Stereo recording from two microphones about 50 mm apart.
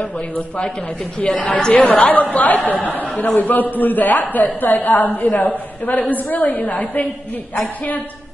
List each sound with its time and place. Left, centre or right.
1.2 s a woman's voice: left